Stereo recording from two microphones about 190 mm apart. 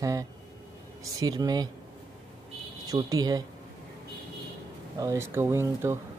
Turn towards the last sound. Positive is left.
turn(degrees=-15)  # may be behind; listen again after turning